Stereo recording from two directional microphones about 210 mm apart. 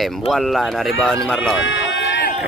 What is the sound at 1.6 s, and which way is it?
Run, 65° left (ahead or behind).